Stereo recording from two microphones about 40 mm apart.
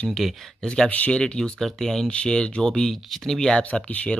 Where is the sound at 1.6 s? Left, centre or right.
Centre.